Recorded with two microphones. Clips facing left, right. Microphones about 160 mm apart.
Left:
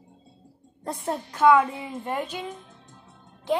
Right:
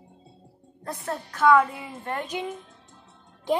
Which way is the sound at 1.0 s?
15° left (ahead or behind).